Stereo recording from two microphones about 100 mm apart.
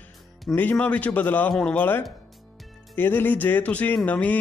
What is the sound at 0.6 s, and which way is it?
A man's voice, 15° left (ahead or behind).